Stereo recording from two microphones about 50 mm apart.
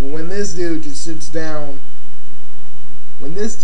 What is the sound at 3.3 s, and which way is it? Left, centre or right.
Speech, centre.